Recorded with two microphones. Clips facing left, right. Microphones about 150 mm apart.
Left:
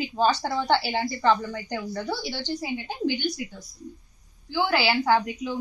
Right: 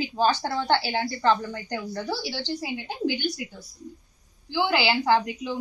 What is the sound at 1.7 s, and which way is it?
A woman's voice, 5° right (ahead or behind).